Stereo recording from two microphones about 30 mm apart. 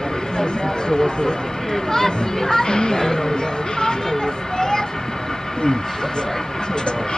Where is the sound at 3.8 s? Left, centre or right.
Left.